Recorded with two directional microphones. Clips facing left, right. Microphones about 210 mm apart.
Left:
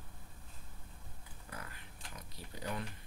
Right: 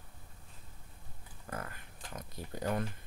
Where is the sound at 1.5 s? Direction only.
50° right (ahead or behind).